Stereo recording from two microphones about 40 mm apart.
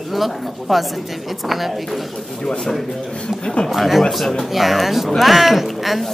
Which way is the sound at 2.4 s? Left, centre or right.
Centre.